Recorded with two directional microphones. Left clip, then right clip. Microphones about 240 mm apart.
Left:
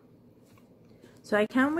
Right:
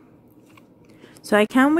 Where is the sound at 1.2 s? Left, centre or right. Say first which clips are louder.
Right 8 dB; right.